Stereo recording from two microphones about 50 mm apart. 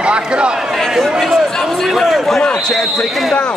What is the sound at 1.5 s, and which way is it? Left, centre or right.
Speech, centre.